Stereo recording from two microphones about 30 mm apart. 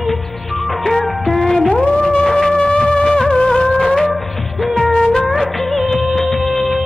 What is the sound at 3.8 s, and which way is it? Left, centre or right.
Music, centre.